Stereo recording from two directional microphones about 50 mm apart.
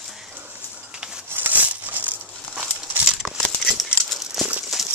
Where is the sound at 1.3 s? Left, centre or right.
Right.